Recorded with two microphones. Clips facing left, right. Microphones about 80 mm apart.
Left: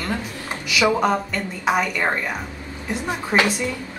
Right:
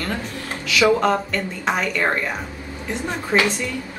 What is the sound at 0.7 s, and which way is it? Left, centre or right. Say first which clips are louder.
A woman's voice: right 2 dB; centre.